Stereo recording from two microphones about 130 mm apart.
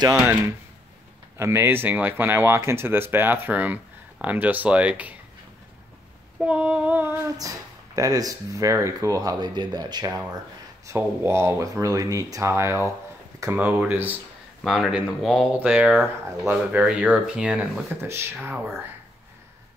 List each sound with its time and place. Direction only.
1.4 s speech: 20° right (ahead or behind)
6.4 s speech: 10° right (ahead or behind)
7.3 s speech: 25° right (ahead or behind)
14.6 s speech: centre (ahead or behind)
18.0 s speech: 20° right (ahead or behind)